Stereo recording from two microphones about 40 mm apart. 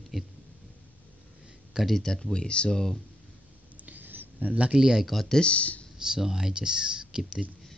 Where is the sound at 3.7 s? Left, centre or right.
Right.